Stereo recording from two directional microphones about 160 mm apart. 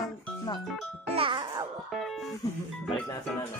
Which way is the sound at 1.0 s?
35° right (ahead or behind).